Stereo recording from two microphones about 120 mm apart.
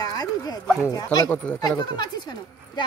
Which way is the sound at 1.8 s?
35° left (ahead or behind).